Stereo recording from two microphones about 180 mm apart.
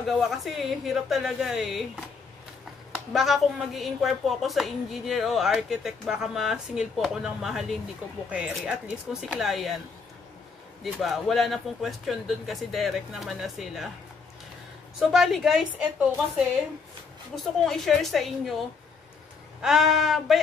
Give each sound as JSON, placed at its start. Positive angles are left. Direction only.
{"t": 0.0, "sound": "a woman's voice", "side_deg": 0}
{"t": 10.8, "sound": "a woman's voice", "side_deg": 0}
{"t": 15.0, "sound": "a woman's voice", "side_deg": 0}
{"t": 17.4, "sound": "a woman's voice", "side_deg": 0}
{"t": 19.6, "sound": "a woman's voice", "side_deg": 0}